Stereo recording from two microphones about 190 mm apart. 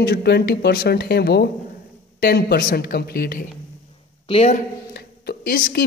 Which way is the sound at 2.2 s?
55° left (ahead or behind).